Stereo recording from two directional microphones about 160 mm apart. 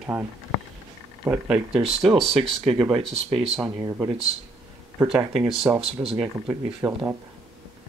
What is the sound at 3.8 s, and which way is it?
Speech, 25° right (ahead or behind).